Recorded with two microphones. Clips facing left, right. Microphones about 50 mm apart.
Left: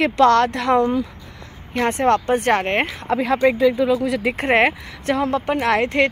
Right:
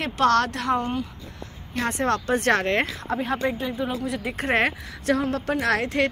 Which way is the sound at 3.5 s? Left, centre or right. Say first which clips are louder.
Left 11 dB; left.